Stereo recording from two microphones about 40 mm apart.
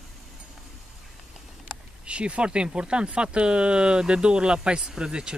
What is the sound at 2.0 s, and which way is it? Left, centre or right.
Speech, right.